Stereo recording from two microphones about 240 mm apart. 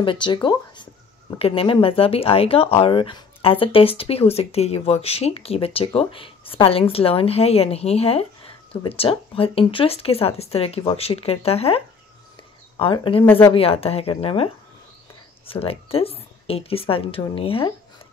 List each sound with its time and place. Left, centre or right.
0.0 s speech: centre